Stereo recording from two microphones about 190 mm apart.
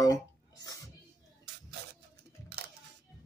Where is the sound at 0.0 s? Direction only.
20° left (ahead or behind).